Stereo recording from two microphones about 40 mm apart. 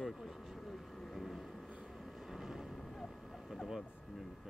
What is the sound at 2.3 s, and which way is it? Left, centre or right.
Vehicle, centre.